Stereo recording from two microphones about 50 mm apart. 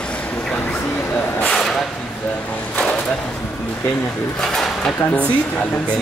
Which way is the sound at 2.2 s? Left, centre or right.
Left.